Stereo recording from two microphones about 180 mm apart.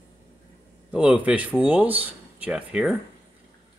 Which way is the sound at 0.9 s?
5° right (ahead or behind).